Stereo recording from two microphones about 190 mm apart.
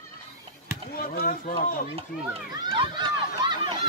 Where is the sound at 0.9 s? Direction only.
50° left (ahead or behind).